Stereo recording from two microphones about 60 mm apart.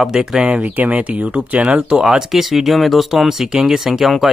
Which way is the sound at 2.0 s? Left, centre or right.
Centre.